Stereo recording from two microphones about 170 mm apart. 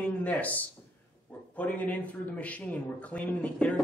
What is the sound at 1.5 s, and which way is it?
Speech, 10° left (ahead or behind).